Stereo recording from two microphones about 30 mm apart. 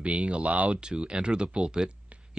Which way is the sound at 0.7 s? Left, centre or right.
Right.